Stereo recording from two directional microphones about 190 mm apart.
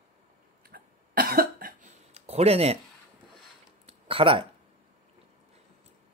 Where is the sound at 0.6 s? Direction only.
50° right (ahead or behind).